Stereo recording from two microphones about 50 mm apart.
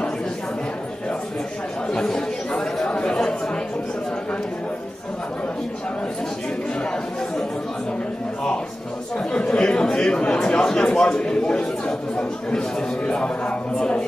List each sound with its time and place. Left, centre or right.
1.9 s chatter: centre
9.2 s chatter: centre